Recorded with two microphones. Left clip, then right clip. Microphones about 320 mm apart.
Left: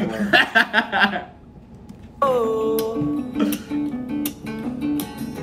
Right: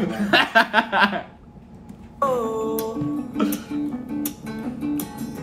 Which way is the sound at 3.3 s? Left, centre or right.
Centre.